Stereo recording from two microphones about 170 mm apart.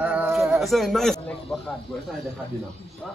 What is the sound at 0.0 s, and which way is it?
Speech, 5° right (ahead or behind).